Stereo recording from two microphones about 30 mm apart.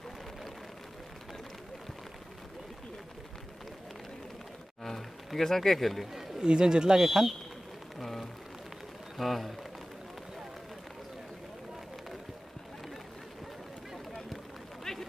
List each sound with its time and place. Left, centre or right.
4.8 s speech: centre
6.4 s speech: right
7.0 s speech: centre
8.0 s a sound: centre
9.1 s speech: centre